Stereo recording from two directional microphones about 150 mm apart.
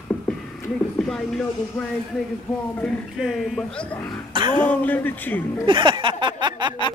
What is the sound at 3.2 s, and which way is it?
Speech, 5° left (ahead or behind).